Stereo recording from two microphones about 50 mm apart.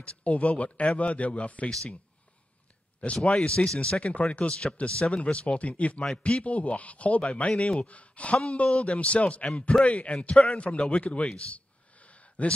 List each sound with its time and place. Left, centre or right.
0.2 s speech: left
3.2 s speech: centre
4.1 s speech: left
6.0 s speech: centre
6.4 s speech: left